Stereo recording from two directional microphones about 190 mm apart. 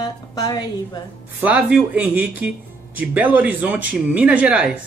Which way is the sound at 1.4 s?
5° right (ahead or behind).